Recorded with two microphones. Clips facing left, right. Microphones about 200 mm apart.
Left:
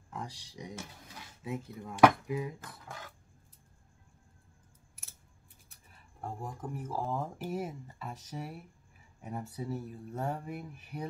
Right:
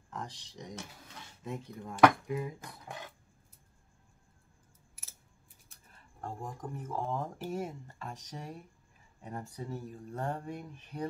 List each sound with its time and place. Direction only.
0.1 s speech: 10° left (ahead or behind)
2.6 s a sound: 20° right (ahead or behind)
6.2 s speech: 5° left (ahead or behind)